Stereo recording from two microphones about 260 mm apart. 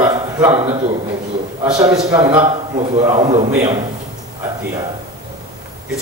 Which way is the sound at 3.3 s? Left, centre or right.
Right.